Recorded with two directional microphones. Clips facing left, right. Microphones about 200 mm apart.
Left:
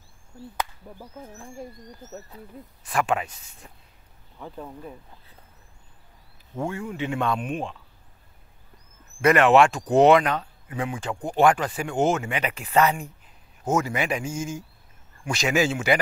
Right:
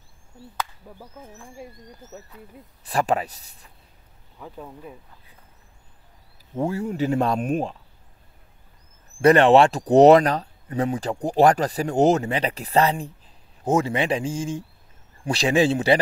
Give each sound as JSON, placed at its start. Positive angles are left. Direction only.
{"t": 2.8, "sound": "speech", "side_deg": -35}
{"t": 4.4, "sound": "speech", "side_deg": 0}
{"t": 6.7, "sound": "speech", "side_deg": -40}
{"t": 9.2, "sound": "speech", "side_deg": -30}